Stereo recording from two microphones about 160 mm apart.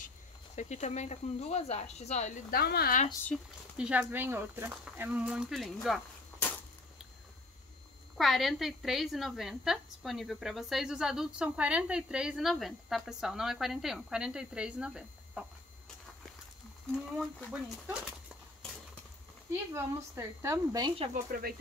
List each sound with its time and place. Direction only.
0.6 s speech: 45° left (ahead or behind)
2.5 s speech: 75° left (ahead or behind)
3.3 s speech: 5° left (ahead or behind)
3.7 s speech: 5° right (ahead or behind)
8.2 s a woman's voice: centre (ahead or behind)
17.5 s speech: 5° right (ahead or behind)
19.7 s speech: 15° right (ahead or behind)
21.1 s speech: 65° right (ahead or behind)